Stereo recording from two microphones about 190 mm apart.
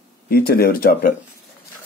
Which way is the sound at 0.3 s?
55° left (ahead or behind).